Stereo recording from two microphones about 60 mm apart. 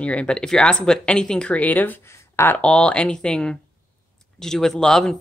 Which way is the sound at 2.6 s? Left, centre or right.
Centre.